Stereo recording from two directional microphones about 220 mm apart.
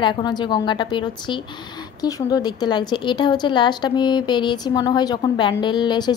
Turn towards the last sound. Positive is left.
turn(degrees=20)  # may be behind; listen again after turning